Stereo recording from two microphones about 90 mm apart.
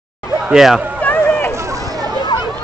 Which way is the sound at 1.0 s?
15° left (ahead or behind).